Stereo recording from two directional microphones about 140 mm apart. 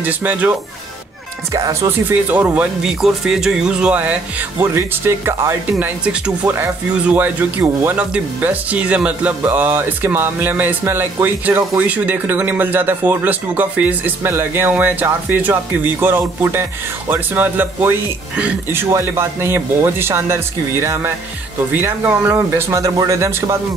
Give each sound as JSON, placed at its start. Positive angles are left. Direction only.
{"t": 0.0, "sound": "speech", "side_deg": -15}